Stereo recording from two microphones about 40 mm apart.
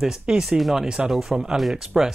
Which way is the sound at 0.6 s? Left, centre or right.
Centre.